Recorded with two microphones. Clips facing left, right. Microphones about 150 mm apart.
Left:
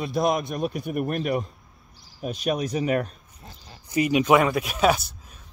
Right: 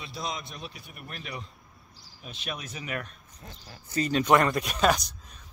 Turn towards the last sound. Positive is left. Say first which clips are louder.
# left 3 dB
turn(degrees=5)  # may be behind; listen again after turning